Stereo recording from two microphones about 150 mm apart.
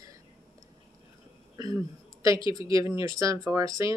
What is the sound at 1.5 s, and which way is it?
Speech, 25° right (ahead or behind).